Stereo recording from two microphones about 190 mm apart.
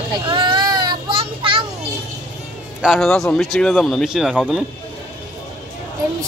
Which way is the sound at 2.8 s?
Centre (ahead or behind).